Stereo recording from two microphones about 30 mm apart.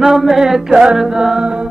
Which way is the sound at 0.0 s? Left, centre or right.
Centre.